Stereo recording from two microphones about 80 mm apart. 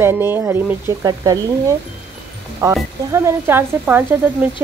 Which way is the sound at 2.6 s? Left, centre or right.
Right.